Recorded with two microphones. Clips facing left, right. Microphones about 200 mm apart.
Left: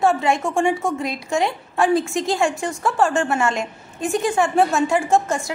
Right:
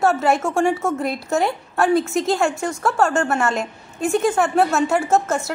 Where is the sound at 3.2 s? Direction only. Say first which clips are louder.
Even; 15° left (ahead or behind).